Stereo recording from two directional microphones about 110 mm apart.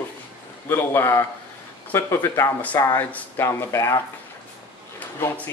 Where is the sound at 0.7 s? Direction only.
25° left (ahead or behind).